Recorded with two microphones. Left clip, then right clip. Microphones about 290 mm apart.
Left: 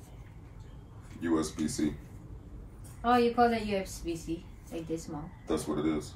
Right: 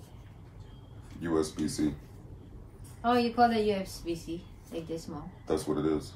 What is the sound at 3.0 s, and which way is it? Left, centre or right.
Speech, centre.